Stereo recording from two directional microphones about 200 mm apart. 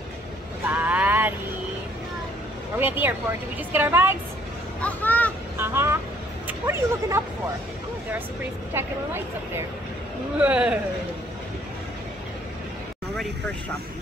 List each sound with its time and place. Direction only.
0.7 s vehicle: 10° right (ahead or behind)
2.8 s a woman's voice: 10° right (ahead or behind)
4.8 s speech: 10° left (ahead or behind)
5.6 s vehicle: 10° right (ahead or behind)
6.4 s speech: 10° right (ahead or behind)
8.8 s a woman's voice: 10° right (ahead or behind)
10.4 s speech: 5° right (ahead or behind)